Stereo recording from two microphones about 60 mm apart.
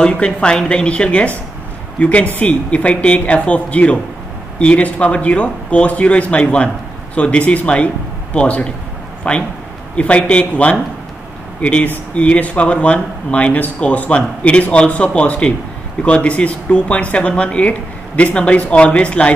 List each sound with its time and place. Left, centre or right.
0.0 s speech: centre